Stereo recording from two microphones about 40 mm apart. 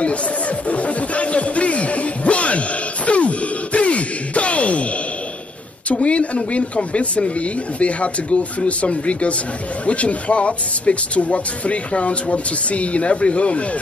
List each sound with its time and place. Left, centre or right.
0.0 s music: left
5.9 s speech: left